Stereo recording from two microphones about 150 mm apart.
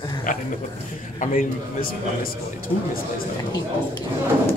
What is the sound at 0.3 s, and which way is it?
A man's voice, 65° left (ahead or behind).